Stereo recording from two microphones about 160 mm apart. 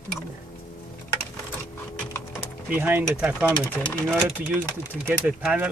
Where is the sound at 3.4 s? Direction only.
10° left (ahead or behind).